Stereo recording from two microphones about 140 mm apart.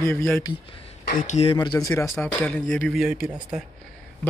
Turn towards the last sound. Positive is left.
turn(degrees=-5)  # may be behind; listen again after turning